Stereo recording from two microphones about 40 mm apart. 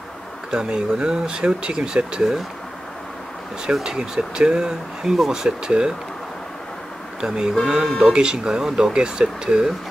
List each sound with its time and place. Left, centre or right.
0.5 s speech: centre
3.6 s speech: centre
7.2 s speech: centre